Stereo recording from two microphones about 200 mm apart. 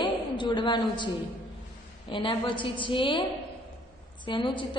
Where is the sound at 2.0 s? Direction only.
25° left (ahead or behind).